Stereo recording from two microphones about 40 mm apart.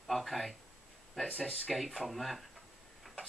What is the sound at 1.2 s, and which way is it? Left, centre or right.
Speech, left.